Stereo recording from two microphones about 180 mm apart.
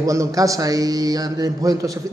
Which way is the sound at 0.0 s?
20° right (ahead or behind).